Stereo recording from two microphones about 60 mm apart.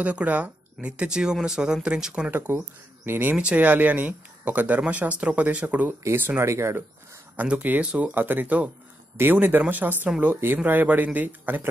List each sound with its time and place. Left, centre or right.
0.0 s speech: right
3.1 s speech: right
6.4 s speech: right
7.4 s speech: centre